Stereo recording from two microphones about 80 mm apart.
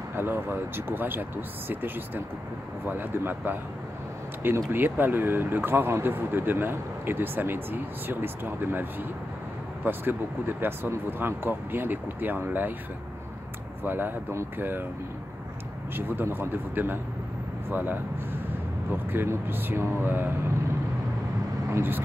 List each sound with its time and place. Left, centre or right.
0.1 s speech: right
4.6 s speech: right
9.8 s speech: right
13.8 s speech: right
16.0 s speech: right
21.7 s speech: right